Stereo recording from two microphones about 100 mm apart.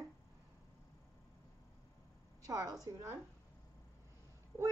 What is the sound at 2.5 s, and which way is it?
Speech, 35° right (ahead or behind).